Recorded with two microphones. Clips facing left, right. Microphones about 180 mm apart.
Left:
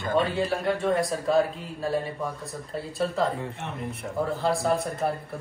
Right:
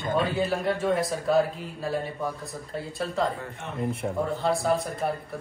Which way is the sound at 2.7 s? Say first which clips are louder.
Left 3 dB; centre (ahead or behind).